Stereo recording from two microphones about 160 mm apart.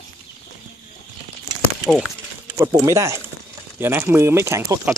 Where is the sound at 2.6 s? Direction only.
20° right (ahead or behind).